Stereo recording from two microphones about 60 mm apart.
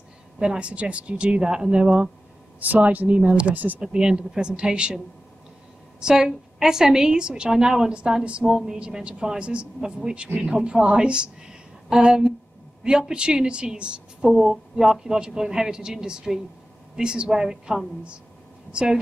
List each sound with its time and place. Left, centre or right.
0.4 s speech: centre
2.6 s speech: right
3.8 s a woman's voice: centre
5.9 s a woman's voice: centre